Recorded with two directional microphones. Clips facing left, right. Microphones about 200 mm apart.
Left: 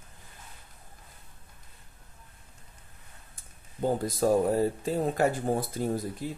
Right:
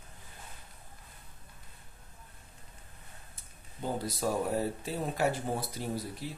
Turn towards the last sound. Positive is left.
turn(degrees=50)  # may be behind; listen again after turning